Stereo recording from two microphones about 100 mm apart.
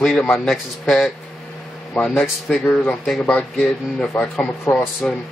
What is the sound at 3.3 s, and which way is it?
Speech, 15° left (ahead or behind).